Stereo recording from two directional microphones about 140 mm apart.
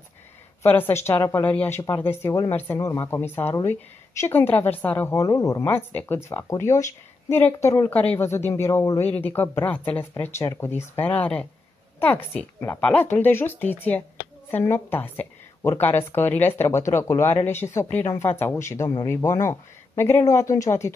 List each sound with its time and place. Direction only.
0.6 s a woman's voice: 15° left (ahead or behind)
7.9 s a woman's voice: 10° left (ahead or behind)